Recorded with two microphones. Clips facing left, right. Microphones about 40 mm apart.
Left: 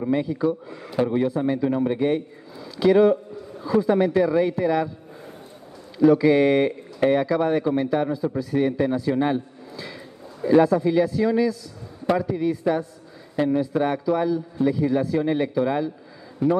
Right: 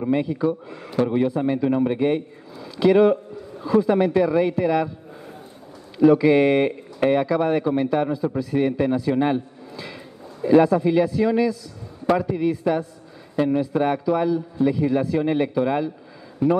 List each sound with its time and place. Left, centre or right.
0.0 s a man's voice: centre
6.0 s a man's voice: centre
16.4 s a man's voice: centre